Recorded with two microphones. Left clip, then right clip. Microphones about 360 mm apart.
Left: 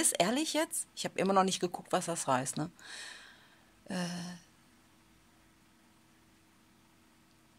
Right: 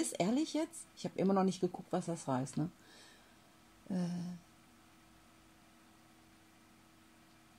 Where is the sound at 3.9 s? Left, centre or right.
Left.